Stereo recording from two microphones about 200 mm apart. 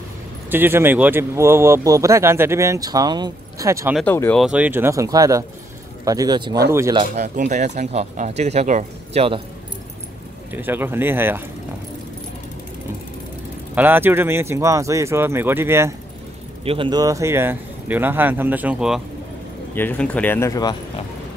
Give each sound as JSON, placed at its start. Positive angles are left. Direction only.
{"t": 0.5, "sound": "speech", "side_deg": -10}
{"t": 3.9, "sound": "speech", "side_deg": 10}
{"t": 4.4, "sound": "speech", "side_deg": -5}
{"t": 7.2, "sound": "speech", "side_deg": -35}
{"t": 10.5, "sound": "speech", "side_deg": -10}
{"t": 13.7, "sound": "speech", "side_deg": -10}
{"t": 16.6, "sound": "speech", "side_deg": -25}
{"t": 19.7, "sound": "speech", "side_deg": 10}